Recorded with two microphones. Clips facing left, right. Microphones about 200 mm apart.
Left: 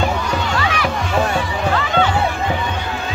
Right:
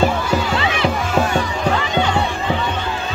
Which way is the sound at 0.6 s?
25° right (ahead or behind).